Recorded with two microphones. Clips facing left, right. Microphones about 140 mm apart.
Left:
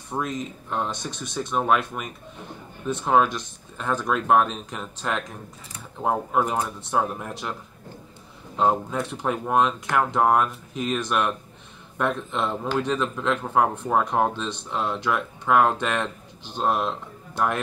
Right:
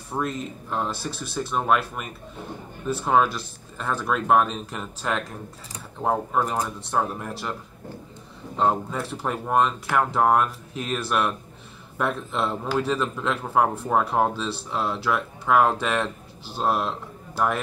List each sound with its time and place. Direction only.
0.1 s a man's voice: 5° right (ahead or behind)
8.5 s a man's voice: centre (ahead or behind)